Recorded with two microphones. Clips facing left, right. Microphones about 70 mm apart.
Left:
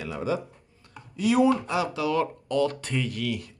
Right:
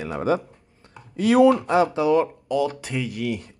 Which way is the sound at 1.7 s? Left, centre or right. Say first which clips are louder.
Right 7 dB; right.